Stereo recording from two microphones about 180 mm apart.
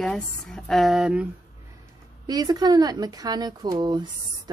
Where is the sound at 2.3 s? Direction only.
20° right (ahead or behind).